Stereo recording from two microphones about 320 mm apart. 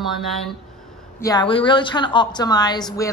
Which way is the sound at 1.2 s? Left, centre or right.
Centre.